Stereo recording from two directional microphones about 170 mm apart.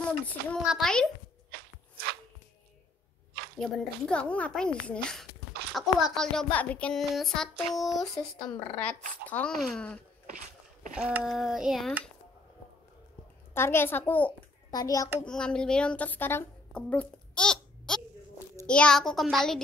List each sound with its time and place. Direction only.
0.0 s a sound: 5° left (ahead or behind)
0.7 s speech: centre (ahead or behind)
3.5 s speech: 5° left (ahead or behind)
11.0 s speech: 5° right (ahead or behind)
13.5 s speech: 15° left (ahead or behind)
14.7 s a child's voice: 20° left (ahead or behind)
15.2 s a woman's voice: 5° left (ahead or behind)